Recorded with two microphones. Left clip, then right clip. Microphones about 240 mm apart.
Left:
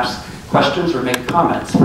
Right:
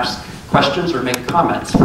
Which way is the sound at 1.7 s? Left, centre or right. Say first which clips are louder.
Right 1 dB; left.